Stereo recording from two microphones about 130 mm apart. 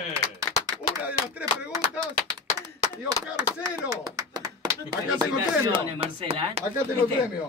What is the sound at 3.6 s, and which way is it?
Speech, 25° right (ahead or behind).